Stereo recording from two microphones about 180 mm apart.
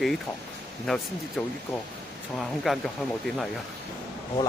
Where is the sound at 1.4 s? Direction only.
5° left (ahead or behind).